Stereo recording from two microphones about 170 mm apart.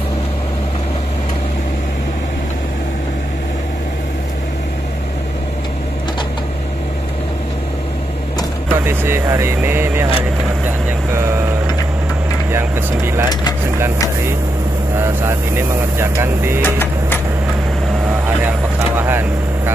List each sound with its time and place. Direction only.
8.8 s speech: 15° right (ahead or behind)
11.1 s vehicle: 15° right (ahead or behind)
12.4 s speech: 15° right (ahead or behind)
13.3 s speech: 25° left (ahead or behind)
15.0 s speech: 15° right (ahead or behind)
16.6 s printer: 10° left (ahead or behind)
18.9 s speech: 15° right (ahead or behind)